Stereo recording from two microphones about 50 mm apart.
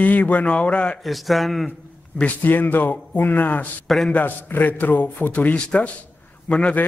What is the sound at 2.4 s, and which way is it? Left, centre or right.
A man's voice, left.